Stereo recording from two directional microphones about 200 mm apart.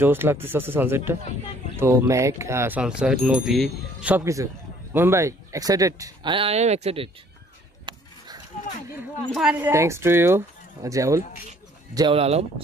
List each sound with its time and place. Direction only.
0.0 s speech: 10° right (ahead or behind); by 7.1 s 30° right (ahead or behind)
9.3 s speech: 5° right (ahead or behind)
12.2 s speech: 30° right (ahead or behind)